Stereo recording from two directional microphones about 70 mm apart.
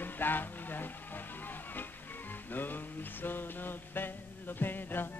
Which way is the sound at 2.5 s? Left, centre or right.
Left.